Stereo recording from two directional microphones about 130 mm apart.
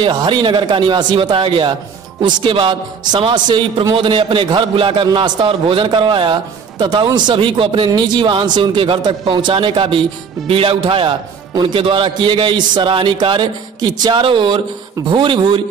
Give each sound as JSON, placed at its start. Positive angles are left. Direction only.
{"t": 0.0, "sound": "a man's voice", "side_deg": -35}